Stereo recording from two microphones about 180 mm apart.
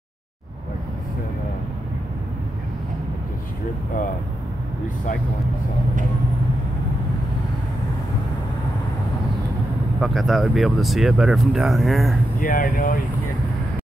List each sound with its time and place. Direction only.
9.9 s speech: centre (ahead or behind)
12.4 s speech: 50° left (ahead or behind)